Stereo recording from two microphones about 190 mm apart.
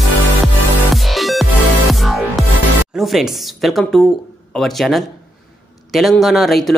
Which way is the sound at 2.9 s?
Centre (ahead or behind).